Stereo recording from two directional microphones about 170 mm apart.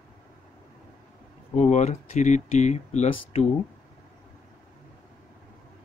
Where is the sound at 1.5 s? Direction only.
40° left (ahead or behind).